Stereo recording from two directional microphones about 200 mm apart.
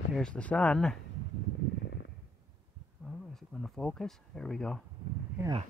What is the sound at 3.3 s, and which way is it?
Speech, centre (ahead or behind).